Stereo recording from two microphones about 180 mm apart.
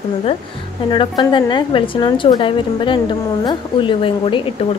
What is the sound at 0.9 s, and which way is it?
A woman's voice, 25° left (ahead or behind).